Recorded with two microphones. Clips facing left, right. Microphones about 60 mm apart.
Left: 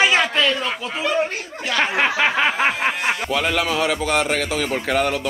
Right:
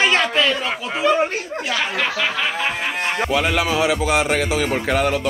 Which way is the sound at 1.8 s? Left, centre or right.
Left.